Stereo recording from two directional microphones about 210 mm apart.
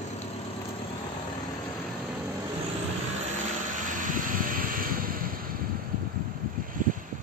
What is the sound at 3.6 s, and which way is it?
Vehicle, 40° right (ahead or behind).